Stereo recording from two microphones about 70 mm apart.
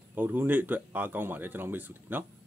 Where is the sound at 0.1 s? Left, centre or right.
Right.